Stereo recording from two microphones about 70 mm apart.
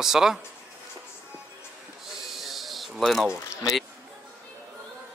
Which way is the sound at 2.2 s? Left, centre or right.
Centre.